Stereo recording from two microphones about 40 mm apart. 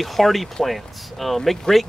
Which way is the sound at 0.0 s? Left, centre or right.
Centre.